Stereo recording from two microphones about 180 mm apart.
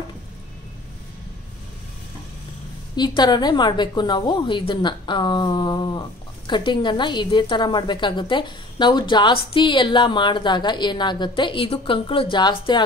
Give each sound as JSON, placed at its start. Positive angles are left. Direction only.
{"t": 3.0, "sound": "a woman's voice", "side_deg": 25}